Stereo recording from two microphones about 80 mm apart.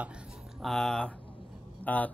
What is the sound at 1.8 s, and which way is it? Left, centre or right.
Speech, centre.